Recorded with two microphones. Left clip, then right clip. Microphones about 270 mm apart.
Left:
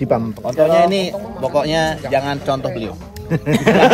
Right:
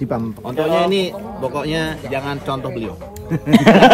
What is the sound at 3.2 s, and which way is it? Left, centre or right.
Speech, left.